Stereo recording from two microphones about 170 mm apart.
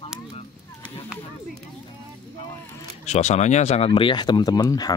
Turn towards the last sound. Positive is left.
turn(degrees=25)  # may be behind; listen again after turning